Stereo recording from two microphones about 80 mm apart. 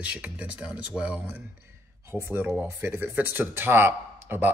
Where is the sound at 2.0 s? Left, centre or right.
Right.